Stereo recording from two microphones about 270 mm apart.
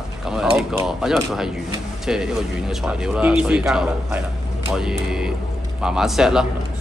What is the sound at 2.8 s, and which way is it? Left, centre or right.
A man's voice, centre.